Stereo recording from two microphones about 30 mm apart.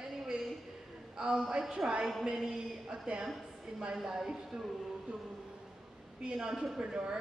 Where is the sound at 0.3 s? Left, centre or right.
Right.